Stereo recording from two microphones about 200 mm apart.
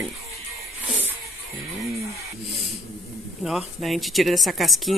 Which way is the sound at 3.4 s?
Centre (ahead or behind).